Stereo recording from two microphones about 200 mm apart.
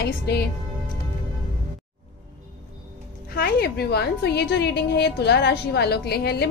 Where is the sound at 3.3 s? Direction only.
55° left (ahead or behind).